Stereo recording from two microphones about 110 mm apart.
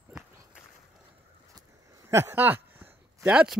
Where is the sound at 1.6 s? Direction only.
30° right (ahead or behind).